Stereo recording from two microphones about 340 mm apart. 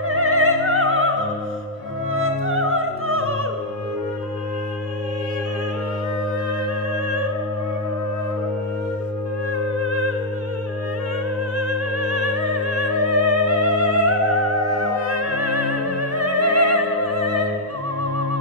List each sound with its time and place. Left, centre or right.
0.1 s opera: right
2.4 s music: right
9.8 s music: right
11.5 s music: right